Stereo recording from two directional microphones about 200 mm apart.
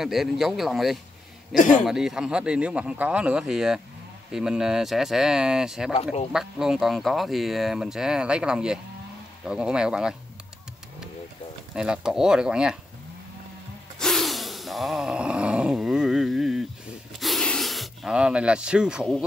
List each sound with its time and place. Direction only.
0.0 s speech: centre (ahead or behind)
1.6 s a man's voice: 40° left (ahead or behind)
1.9 s speech: centre (ahead or behind)
11.7 s speech: 5° right (ahead or behind)
13.9 s a sound: centre (ahead or behind)
17.2 s snake: centre (ahead or behind)